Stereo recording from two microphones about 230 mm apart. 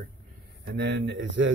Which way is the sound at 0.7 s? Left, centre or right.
Right.